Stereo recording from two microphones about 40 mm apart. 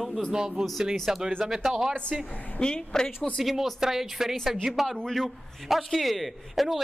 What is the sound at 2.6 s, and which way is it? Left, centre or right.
Speech, left.